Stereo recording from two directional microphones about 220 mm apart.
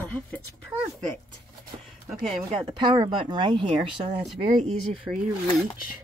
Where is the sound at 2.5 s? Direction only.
20° right (ahead or behind).